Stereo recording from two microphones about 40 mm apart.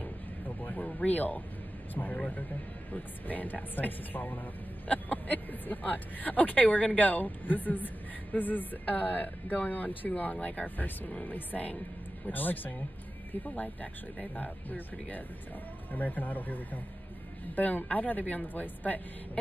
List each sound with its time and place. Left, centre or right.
0.6 s music: left
2.9 s speech: left
4.8 s speech: left